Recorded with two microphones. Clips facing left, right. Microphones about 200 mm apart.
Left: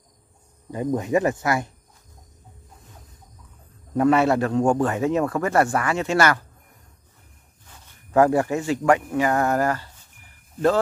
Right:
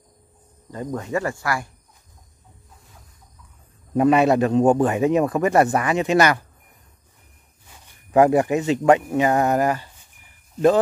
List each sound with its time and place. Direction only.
0.7 s speech: 15° left (ahead or behind)
3.9 s a man's voice: 15° right (ahead or behind)
7.6 s speech: 10° right (ahead or behind)